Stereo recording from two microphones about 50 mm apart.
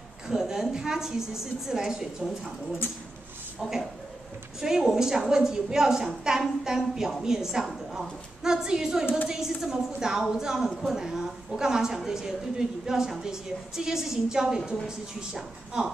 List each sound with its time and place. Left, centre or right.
0.3 s a woman's voice: centre
4.6 s a woman's voice: centre